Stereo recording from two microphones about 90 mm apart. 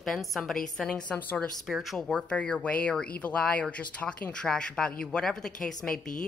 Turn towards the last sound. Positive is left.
turn(degrees=5)  # may be behind; listen again after turning